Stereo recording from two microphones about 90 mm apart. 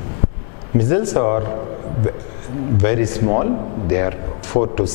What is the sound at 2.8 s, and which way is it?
A man's voice, 10° left (ahead or behind).